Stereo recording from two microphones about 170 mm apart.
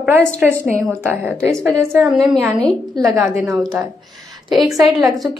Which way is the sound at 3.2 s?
Centre (ahead or behind).